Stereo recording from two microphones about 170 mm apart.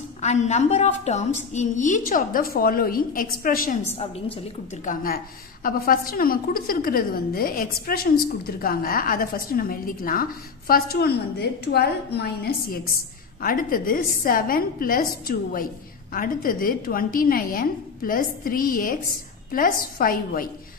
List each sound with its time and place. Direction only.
0.2 s a woman's voice: 40° left (ahead or behind)
3.9 s a woman's voice: 35° left (ahead or behind)
4.8 s a woman's voice: 60° left (ahead or behind)
13.4 s a woman's voice: 55° left (ahead or behind)